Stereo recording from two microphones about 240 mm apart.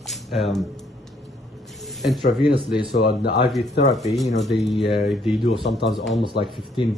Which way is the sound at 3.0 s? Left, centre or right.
Left.